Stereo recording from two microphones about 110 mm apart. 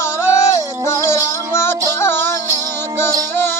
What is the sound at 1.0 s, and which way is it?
Music, 25° left (ahead or behind).